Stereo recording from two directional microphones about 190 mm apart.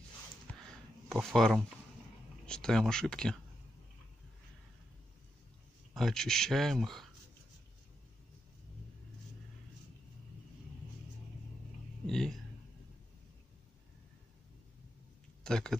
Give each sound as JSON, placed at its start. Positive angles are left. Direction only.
{"t": 1.0, "sound": "speech", "side_deg": 0}
{"t": 5.9, "sound": "speech", "side_deg": 0}
{"t": 12.1, "sound": "speech", "side_deg": 0}
{"t": 15.4, "sound": "speech", "side_deg": 5}